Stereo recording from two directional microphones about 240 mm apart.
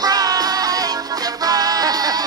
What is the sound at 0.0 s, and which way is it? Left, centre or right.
Music, centre.